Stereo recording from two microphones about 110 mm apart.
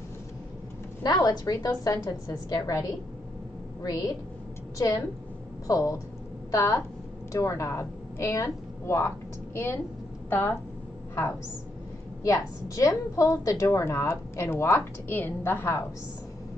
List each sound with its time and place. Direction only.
1.0 s a woman's voice: 35° left (ahead or behind)
3.8 s a woman's voice: 35° left (ahead or behind)
12.2 s a woman's voice: 30° left (ahead or behind)